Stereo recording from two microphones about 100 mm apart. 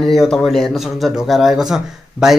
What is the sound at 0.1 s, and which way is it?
A man's voice, centre (ahead or behind).